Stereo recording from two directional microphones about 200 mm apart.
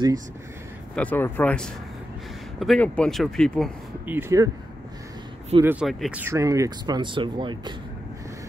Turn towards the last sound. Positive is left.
turn(degrees=-25)  # may be behind; listen again after turning